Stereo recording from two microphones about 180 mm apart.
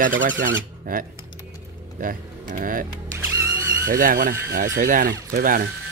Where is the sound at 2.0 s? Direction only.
50° right (ahead or behind).